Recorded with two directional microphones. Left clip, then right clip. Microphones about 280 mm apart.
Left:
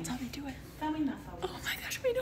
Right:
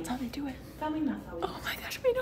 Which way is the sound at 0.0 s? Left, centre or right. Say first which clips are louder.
Right 3 dB; centre.